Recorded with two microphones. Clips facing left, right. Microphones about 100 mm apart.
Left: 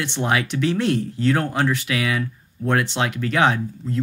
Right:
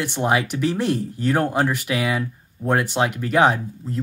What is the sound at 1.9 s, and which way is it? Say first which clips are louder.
Speech: right 1 dB; 20° right (ahead or behind).